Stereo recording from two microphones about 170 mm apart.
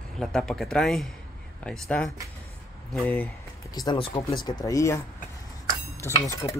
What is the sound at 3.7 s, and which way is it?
Speech, 30° left (ahead or behind).